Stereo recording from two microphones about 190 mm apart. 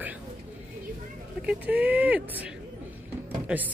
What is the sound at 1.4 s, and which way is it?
A woman's voice, 10° right (ahead or behind).